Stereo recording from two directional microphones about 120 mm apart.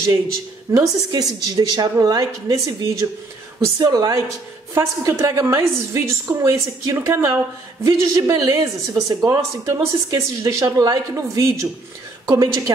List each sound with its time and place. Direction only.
0.7 s a woman's voice: 30° right (ahead or behind)